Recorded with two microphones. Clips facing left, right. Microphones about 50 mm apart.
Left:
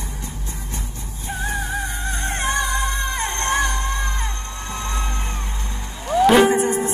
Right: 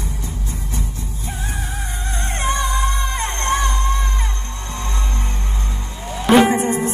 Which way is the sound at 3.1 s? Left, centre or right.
Right.